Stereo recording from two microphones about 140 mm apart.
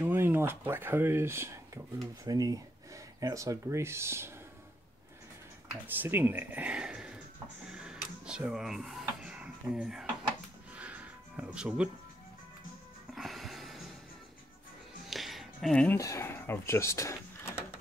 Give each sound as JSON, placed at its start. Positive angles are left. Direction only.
{"t": 0.0, "sound": "speech", "side_deg": -15}
{"t": 5.9, "sound": "speech", "side_deg": -15}
{"t": 7.6, "sound": "dishes", "side_deg": -5}
{"t": 10.8, "sound": "music", "side_deg": -10}
{"t": 13.1, "sound": "music", "side_deg": 0}
{"t": 15.0, "sound": "music", "side_deg": 0}
{"t": 16.0, "sound": "speech", "side_deg": 20}